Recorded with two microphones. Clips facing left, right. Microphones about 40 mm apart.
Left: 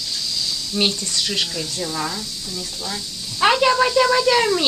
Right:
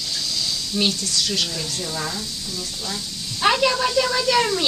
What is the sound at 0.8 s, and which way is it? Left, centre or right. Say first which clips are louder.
Speech: left 1 dB; left.